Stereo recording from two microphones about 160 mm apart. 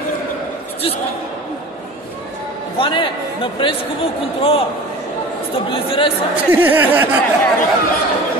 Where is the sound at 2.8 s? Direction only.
30° left (ahead or behind).